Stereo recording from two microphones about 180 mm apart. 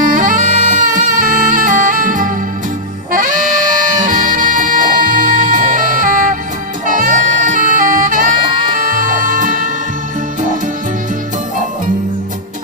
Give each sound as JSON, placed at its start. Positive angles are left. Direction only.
{"t": 0.0, "sound": "music", "side_deg": -45}